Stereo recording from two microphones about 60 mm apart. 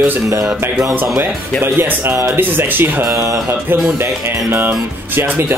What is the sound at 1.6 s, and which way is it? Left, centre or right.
Speech, right.